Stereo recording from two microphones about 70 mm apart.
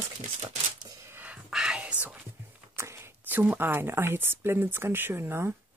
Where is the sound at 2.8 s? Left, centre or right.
Right.